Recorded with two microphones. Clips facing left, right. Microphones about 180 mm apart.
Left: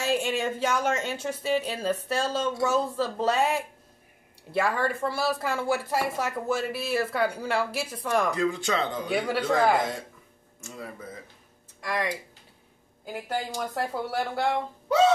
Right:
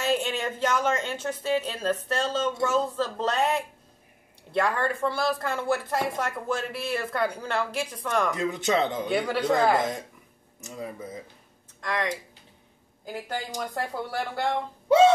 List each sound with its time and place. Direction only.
0.0 s speech: 10° left (ahead or behind)
8.4 s speech: 20° right (ahead or behind)
9.0 s speech: centre (ahead or behind)
10.6 s speech: 15° right (ahead or behind)
11.8 s speech: 10° left (ahead or behind)